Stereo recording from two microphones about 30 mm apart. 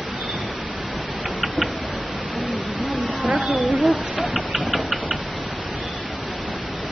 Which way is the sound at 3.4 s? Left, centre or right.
Centre.